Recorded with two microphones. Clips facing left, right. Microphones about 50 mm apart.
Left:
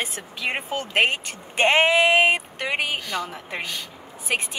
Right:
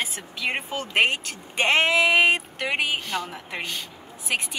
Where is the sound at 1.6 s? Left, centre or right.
Centre.